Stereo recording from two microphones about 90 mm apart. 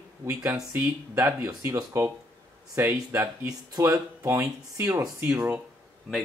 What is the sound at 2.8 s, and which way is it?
Speech, 25° right (ahead or behind).